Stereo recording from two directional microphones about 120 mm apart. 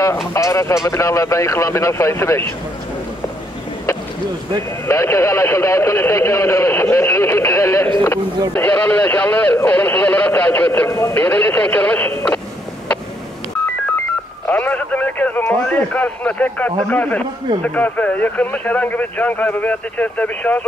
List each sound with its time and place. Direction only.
0.3 s a man's voice: 25° left (ahead or behind)
4.8 s a man's voice: 20° left (ahead or behind)
14.5 s speech: 15° left (ahead or behind)